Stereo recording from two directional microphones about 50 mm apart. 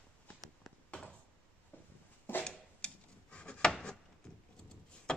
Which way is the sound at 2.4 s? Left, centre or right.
Centre.